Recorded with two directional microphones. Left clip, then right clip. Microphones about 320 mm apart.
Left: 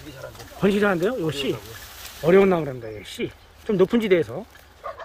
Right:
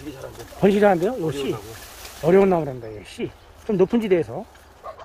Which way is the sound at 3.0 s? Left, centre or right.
Left.